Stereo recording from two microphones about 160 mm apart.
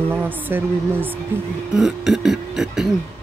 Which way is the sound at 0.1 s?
10° right (ahead or behind).